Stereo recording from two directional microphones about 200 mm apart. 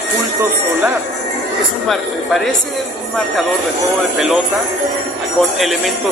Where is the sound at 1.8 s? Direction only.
Centre (ahead or behind).